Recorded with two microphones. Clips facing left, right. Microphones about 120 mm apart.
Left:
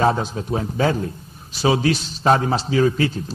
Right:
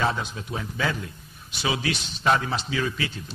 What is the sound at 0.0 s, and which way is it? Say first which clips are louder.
A man's voice: left 7 dB; 35° left (ahead or behind).